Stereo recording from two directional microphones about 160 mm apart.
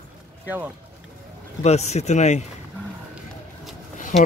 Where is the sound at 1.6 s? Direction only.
45° left (ahead or behind).